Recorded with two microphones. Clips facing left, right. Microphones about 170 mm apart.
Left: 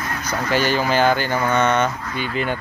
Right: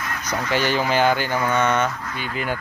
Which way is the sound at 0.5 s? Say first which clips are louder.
Left 2 dB; 20° right (ahead or behind).